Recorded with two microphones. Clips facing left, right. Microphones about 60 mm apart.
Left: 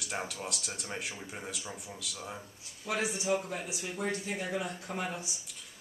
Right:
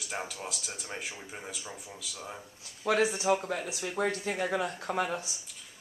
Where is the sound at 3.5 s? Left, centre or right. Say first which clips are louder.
Right 4 dB; right.